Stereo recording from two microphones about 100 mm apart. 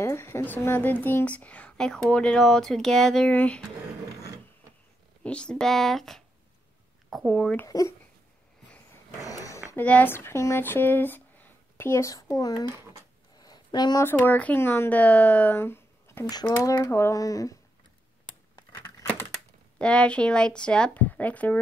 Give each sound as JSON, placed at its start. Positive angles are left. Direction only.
{"t": 0.0, "sound": "a woman's voice", "side_deg": 25}
{"t": 5.2, "sound": "speech", "side_deg": 10}
{"t": 7.6, "sound": "speech", "side_deg": 35}
{"t": 9.2, "sound": "a sound", "side_deg": 35}
{"t": 9.8, "sound": "speech", "side_deg": 15}
{"t": 13.4, "sound": "a sound", "side_deg": 45}
{"t": 14.0, "sound": "speech", "side_deg": 20}
{"t": 16.3, "sound": "speech", "side_deg": 45}
{"t": 19.8, "sound": "a woman's voice", "side_deg": 10}